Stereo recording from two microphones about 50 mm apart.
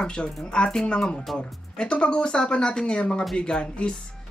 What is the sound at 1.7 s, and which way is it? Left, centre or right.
Speech, left.